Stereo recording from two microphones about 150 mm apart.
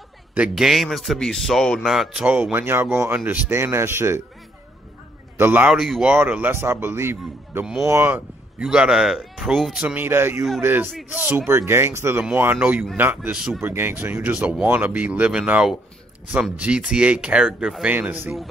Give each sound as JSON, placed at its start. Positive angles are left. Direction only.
{"t": 0.3, "sound": "speech", "side_deg": -5}
{"t": 5.4, "sound": "speech", "side_deg": -10}
{"t": 7.6, "sound": "speech", "side_deg": -5}